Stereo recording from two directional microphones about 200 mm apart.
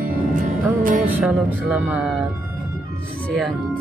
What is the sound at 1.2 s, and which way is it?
Speech, 5° right (ahead or behind).